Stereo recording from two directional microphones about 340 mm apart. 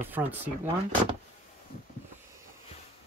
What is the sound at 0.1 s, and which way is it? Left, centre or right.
Speech, centre.